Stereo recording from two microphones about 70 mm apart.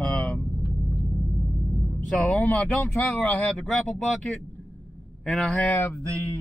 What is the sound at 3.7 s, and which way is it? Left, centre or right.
Speech, centre.